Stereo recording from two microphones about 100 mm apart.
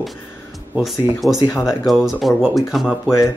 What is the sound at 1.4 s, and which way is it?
Speech, 35° left (ahead or behind).